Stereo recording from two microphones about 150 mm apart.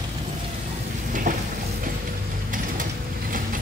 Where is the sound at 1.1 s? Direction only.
65° right (ahead or behind).